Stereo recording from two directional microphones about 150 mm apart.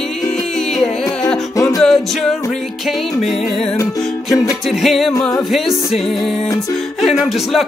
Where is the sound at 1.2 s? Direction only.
5° left (ahead or behind).